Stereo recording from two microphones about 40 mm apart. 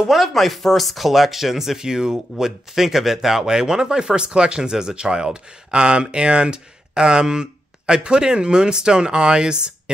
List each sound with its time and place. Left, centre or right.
0.0 s chopping: centre
0.3 s speech: centre; by 9.7 s right